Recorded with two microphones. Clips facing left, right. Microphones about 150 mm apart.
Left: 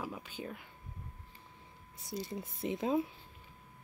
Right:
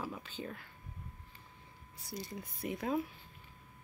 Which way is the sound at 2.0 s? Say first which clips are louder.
Left 4 dB; 25° left (ahead or behind).